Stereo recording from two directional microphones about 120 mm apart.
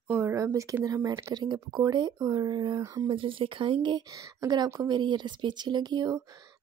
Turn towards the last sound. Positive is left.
turn(degrees=-35)  # may be behind; listen again after turning